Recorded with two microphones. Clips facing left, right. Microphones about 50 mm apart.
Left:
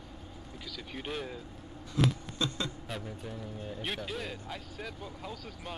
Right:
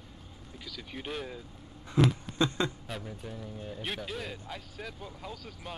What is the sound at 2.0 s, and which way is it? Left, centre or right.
Speech, right.